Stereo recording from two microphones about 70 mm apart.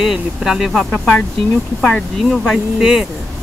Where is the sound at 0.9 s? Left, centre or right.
Centre.